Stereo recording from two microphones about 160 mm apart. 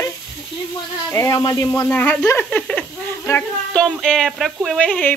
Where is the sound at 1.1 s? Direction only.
20° left (ahead or behind).